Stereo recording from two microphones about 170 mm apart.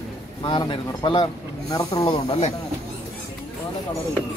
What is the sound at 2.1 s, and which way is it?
Speech, 40° left (ahead or behind).